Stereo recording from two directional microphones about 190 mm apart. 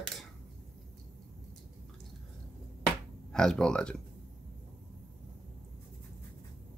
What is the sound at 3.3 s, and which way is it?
Speech, 5° left (ahead or behind).